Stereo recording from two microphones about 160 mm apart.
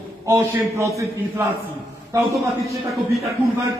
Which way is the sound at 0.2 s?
20° right (ahead or behind).